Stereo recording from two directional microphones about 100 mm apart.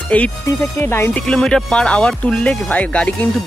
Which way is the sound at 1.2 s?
10° left (ahead or behind).